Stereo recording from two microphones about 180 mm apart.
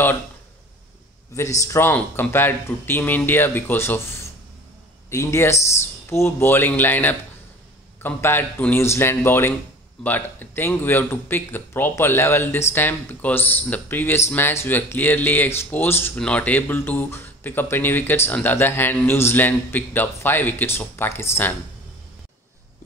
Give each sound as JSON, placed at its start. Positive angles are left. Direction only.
{"t": 1.3, "sound": "speech", "side_deg": 15}